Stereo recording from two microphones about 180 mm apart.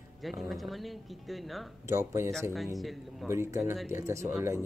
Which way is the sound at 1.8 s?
15° right (ahead or behind).